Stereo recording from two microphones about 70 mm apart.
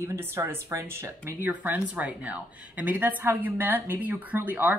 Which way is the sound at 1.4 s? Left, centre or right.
Right.